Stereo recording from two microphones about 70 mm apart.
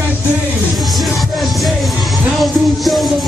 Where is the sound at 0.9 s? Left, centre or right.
Centre.